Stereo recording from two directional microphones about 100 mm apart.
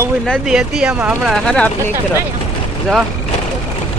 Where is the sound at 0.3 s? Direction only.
5° right (ahead or behind).